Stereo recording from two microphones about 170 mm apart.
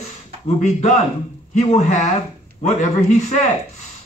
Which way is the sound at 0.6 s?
40° left (ahead or behind).